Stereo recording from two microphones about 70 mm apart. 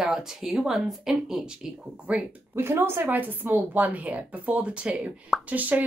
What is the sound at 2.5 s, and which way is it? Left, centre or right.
Speech, right.